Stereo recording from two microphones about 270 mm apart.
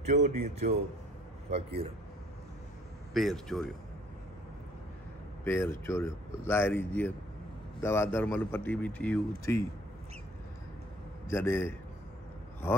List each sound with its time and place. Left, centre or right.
0.1 s a man's voice: right
3.1 s a man's voice: centre
5.4 s a man's voice: centre
11.2 s a man's voice: centre